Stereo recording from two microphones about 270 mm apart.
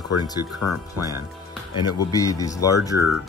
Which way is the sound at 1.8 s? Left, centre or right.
Centre.